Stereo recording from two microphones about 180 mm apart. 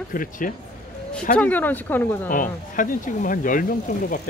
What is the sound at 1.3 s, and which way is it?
Speech, 10° left (ahead or behind).